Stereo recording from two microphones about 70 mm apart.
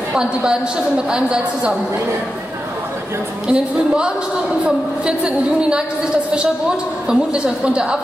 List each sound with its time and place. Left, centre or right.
0.1 s a woman's voice: centre
3.4 s a woman's voice: centre
7.1 s a woman's voice: centre